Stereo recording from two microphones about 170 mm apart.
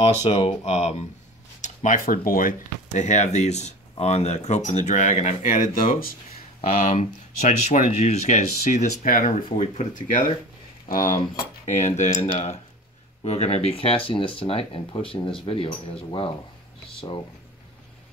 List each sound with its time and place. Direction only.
0.0 s speech: 40° left (ahead or behind)
6.9 s speech: 45° left (ahead or behind)